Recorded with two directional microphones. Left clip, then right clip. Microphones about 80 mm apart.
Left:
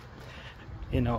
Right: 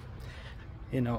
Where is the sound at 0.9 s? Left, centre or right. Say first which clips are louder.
Left 2 dB; right.